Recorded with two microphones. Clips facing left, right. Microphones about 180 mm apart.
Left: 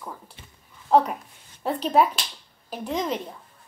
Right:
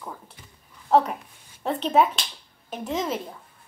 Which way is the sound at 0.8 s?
Centre (ahead or behind).